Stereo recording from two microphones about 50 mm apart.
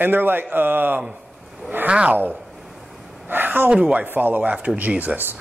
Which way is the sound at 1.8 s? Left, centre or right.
Right.